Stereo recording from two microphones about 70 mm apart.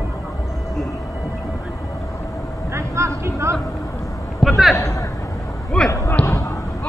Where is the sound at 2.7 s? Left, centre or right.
Right.